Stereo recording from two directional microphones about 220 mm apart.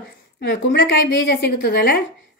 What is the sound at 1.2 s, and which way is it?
Speech, 50° left (ahead or behind).